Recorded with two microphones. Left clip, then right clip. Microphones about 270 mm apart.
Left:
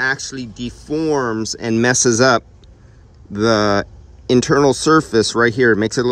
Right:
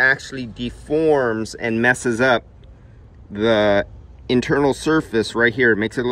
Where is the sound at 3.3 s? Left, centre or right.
Centre.